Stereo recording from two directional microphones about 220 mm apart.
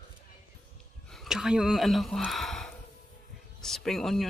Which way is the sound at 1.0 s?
Centre (ahead or behind).